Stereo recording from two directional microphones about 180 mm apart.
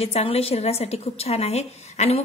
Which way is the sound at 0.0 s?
35° left (ahead or behind).